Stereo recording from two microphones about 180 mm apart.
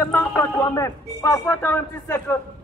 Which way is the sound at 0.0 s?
15° left (ahead or behind).